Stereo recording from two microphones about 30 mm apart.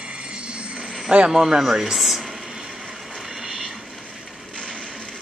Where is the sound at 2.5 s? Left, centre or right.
Centre.